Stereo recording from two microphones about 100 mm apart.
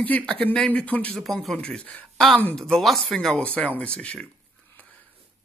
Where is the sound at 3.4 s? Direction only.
15° left (ahead or behind).